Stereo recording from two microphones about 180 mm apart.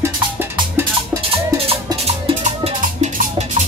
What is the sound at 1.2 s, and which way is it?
Music, 30° right (ahead or behind).